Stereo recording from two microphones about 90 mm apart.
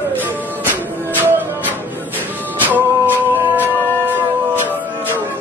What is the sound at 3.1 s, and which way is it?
Music, 20° right (ahead or behind).